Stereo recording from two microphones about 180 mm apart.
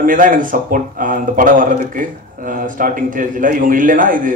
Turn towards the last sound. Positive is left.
turn(degrees=-50)  # may be behind; listen again after turning